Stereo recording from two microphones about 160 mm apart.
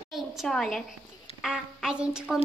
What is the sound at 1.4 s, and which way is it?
Speech, centre (ahead or behind).